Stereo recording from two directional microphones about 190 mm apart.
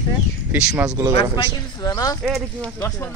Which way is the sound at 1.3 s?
25° left (ahead or behind).